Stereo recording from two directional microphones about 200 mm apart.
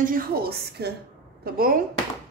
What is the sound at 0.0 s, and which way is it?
A woman's voice, 45° right (ahead or behind).